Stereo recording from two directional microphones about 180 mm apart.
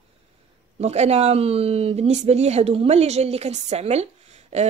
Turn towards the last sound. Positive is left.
turn(degrees=-35)  # may be behind; listen again after turning